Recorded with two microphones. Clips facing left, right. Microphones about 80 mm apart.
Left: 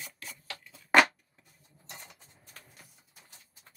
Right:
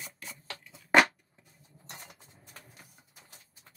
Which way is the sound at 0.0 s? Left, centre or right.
Right.